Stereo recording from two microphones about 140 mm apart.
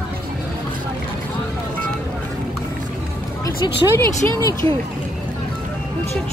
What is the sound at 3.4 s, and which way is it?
Speech, 20° left (ahead or behind).